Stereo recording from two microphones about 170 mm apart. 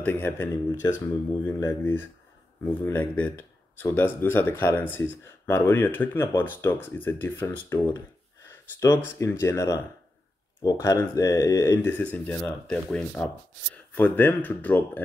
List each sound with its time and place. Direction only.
0.0 s speech: 10° left (ahead or behind)
12.0 s speech: 10° left (ahead or behind)